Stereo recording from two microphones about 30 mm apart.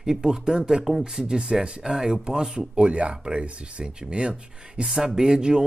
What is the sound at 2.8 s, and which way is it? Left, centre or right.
Speech, right.